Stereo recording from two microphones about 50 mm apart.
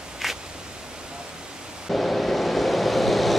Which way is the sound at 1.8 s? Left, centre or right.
Centre.